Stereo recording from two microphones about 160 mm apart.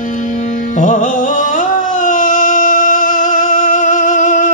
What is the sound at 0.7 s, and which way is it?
Music, 55° left (ahead or behind).